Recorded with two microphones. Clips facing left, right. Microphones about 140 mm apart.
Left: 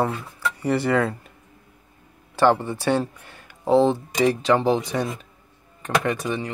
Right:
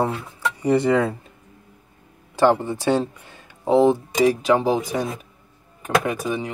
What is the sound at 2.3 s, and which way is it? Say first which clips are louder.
Speech: right 1 dB; 15° right (ahead or behind).